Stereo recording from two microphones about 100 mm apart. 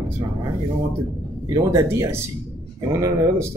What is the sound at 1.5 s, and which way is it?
Speech, 30° right (ahead or behind).